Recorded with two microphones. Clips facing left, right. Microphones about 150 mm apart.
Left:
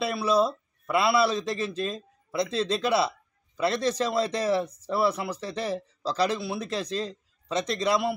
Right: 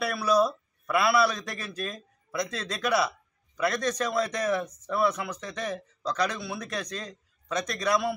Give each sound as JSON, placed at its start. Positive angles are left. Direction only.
{"t": 0.0, "sound": "speech", "side_deg": 25}